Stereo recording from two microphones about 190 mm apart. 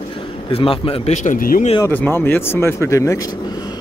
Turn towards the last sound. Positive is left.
turn(degrees=15)  # may be behind; listen again after turning